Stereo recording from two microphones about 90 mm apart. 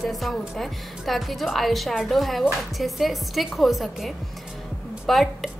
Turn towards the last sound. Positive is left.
turn(degrees=0)  # may be behind; listen again after turning